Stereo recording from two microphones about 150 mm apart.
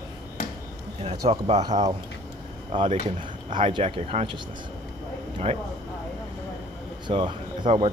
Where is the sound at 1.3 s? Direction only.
45° right (ahead or behind).